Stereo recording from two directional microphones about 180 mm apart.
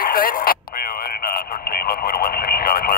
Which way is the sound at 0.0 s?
55° left (ahead or behind).